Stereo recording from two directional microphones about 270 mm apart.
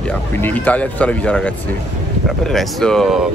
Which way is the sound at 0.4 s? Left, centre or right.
Centre.